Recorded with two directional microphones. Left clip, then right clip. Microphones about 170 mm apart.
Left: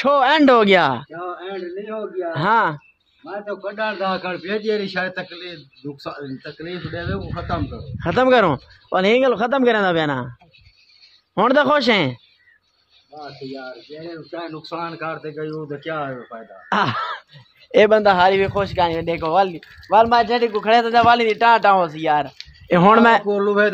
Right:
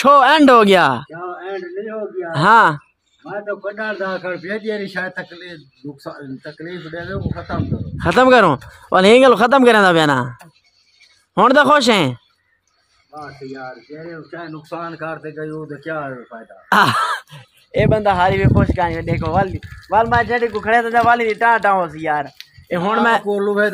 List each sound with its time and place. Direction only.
0.0 s speech: 20° right (ahead or behind)
2.3 s speech: 20° right (ahead or behind)
3.4 s a man's voice: 5° left (ahead or behind)
8.0 s speech: 20° right (ahead or behind)
11.3 s speech: 15° right (ahead or behind)
14.7 s a man's voice: 5° left (ahead or behind)
16.6 s speech: 25° right (ahead or behind)
17.6 s speech: 50° left (ahead or behind)
18.2 s a man's voice: 10° left (ahead or behind)
22.7 s speech: 40° left (ahead or behind)
23.2 s speech: 5° right (ahead or behind)